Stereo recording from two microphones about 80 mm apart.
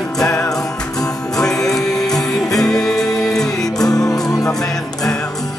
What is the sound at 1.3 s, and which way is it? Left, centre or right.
Music, centre.